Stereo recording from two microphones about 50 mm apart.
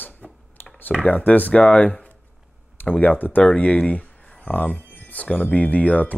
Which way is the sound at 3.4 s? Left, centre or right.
Left.